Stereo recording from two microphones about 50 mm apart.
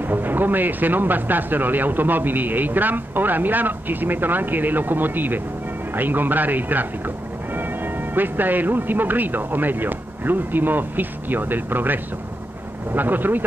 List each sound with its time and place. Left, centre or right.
0.0 s speech: right